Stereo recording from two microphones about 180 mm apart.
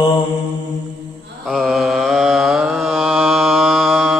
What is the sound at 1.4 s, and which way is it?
Mantra, centre (ahead or behind).